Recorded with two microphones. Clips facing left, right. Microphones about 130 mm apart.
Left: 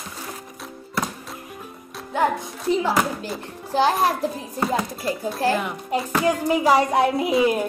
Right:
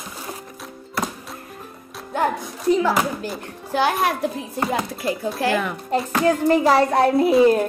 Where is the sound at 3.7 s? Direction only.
30° left (ahead or behind).